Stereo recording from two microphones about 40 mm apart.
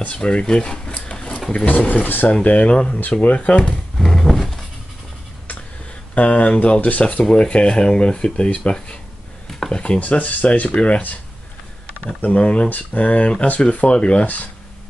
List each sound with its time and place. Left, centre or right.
0.1 s drawer open or close: left
1.5 s speech: left
2.0 s speech: left
2.4 s speech: left
4.0 s a sound: centre
6.1 s speech: left
9.7 s speech: left
9.9 s speech: left
12.4 s speech: left
14.2 s speech: left